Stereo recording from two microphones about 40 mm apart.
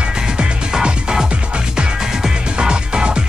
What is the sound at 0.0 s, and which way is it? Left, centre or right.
Music, right.